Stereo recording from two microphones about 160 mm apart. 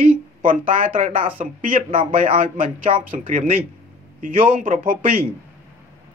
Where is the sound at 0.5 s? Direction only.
55° right (ahead or behind).